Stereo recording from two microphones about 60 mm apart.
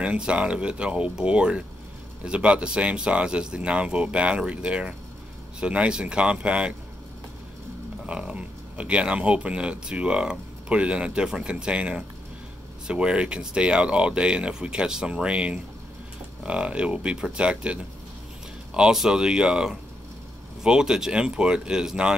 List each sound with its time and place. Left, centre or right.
0.0 s speech: centre
8.1 s speech: centre